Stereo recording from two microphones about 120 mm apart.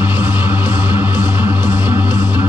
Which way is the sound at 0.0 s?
15° right (ahead or behind).